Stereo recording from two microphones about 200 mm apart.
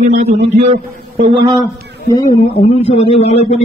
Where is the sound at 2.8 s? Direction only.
30° left (ahead or behind).